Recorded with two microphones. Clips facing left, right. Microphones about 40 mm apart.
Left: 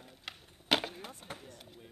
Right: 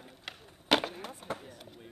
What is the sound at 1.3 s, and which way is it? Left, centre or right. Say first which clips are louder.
Chop: right 3 dB; centre.